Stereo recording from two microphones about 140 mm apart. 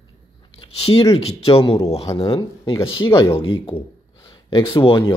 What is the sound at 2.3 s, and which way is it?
Speech, 30° left (ahead or behind).